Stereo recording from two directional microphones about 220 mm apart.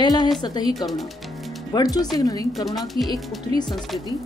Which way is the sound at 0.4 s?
20° left (ahead or behind).